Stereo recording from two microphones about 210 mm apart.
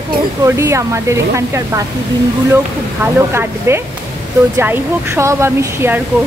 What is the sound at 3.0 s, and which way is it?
Speech, 10° right (ahead or behind).